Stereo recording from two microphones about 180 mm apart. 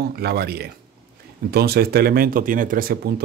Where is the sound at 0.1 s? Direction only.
65° right (ahead or behind).